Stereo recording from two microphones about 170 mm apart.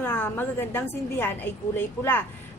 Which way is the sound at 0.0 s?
10° left (ahead or behind).